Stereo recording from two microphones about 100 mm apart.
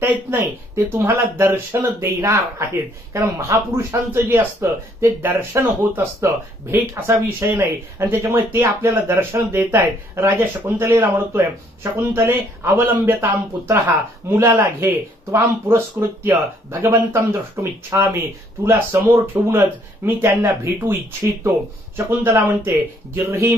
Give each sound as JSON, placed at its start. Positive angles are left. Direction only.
{"t": 0.0, "sound": "speech", "side_deg": -20}
{"t": 16.9, "sound": "speech", "side_deg": -25}